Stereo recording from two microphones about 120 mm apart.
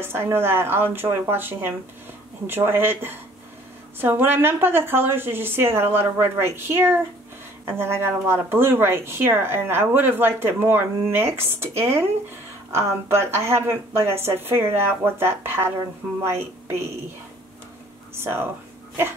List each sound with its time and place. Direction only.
0.0 s speech: 20° right (ahead or behind)
18.1 s speech: 20° right (ahead or behind)